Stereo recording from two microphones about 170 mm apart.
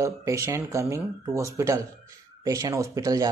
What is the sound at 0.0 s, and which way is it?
Speech, 15° right (ahead or behind).